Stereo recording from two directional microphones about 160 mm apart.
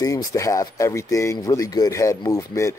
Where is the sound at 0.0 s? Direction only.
20° left (ahead or behind).